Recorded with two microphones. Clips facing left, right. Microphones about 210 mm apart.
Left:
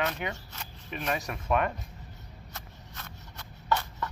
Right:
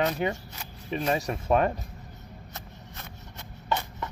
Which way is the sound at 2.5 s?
20° right (ahead or behind).